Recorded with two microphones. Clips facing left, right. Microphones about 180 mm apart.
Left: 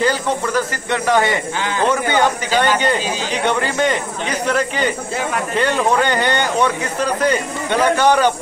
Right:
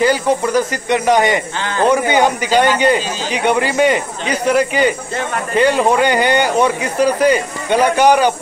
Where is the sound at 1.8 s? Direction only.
15° right (ahead or behind).